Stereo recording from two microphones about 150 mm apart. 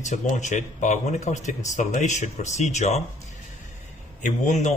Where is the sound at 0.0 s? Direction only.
50° left (ahead or behind).